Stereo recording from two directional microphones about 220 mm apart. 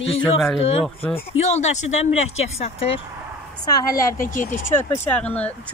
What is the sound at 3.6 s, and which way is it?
Speech, 15° left (ahead or behind).